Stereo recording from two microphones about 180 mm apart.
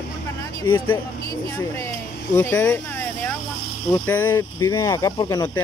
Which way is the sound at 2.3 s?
10° left (ahead or behind).